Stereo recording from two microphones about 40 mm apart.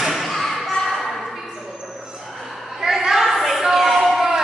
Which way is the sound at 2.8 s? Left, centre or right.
Centre.